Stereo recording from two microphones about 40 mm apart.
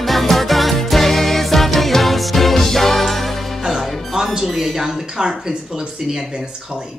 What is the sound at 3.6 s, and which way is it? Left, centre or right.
Music, centre.